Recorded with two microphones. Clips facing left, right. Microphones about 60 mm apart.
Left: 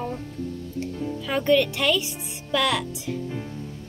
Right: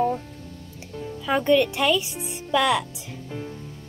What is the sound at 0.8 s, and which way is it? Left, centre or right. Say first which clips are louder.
A woman's voice: left 1 dB; centre.